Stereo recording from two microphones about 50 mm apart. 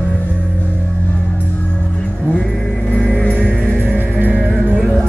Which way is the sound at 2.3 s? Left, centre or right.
Centre.